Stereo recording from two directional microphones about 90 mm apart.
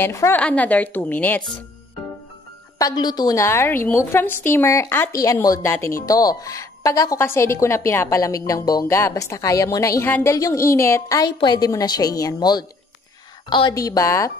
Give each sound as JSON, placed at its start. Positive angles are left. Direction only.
{"t": 0.0, "sound": "a woman's voice", "side_deg": 25}
{"t": 0.4, "sound": "a woman's voice", "side_deg": 15}
{"t": 2.8, "sound": "a woman's voice", "side_deg": 50}
{"t": 3.3, "sound": "a woman's voice", "side_deg": 30}
{"t": 5.1, "sound": "a woman's voice", "side_deg": 40}
{"t": 8.8, "sound": "a woman's voice", "side_deg": 30}
{"t": 11.4, "sound": "a woman's voice", "side_deg": 45}
{"t": 13.5, "sound": "a woman's voice", "side_deg": 60}
{"t": 13.7, "sound": "a woman's voice", "side_deg": 40}